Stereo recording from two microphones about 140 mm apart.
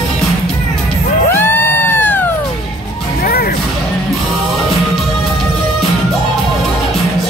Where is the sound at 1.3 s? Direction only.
15° left (ahead or behind).